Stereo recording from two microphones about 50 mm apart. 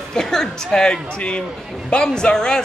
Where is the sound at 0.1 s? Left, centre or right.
Centre.